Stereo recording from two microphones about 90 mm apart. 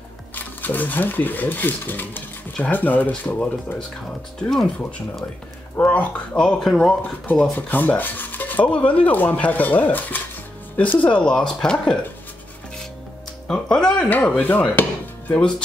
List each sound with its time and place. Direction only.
0.3 s speech: 20° left (ahead or behind)
7.5 s speech: 20° left (ahead or behind)
13.5 s speech: 10° left (ahead or behind)
14.0 s chopping: 20° left (ahead or behind)